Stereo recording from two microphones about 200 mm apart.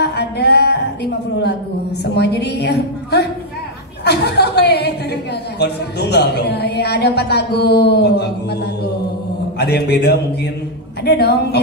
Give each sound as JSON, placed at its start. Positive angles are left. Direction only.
{"t": 0.0, "sound": "singing", "side_deg": 55}
{"t": 2.1, "sound": "a woman's voice", "side_deg": 55}
{"t": 9.6, "sound": "a woman's voice", "side_deg": 55}